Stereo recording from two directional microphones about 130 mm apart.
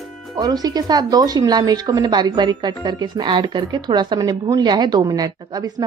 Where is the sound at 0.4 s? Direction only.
30° right (ahead or behind).